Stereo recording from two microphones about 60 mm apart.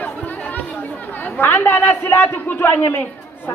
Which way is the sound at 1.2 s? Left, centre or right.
Left.